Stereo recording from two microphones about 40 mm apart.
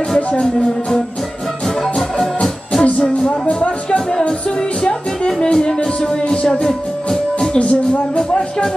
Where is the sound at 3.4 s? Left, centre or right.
Left.